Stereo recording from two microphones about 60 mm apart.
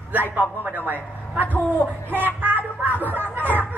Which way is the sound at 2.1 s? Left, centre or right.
Right.